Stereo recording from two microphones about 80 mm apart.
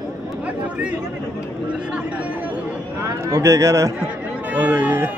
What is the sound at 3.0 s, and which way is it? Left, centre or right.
Speech, right.